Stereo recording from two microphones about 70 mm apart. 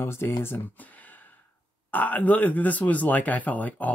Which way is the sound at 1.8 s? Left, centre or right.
Left.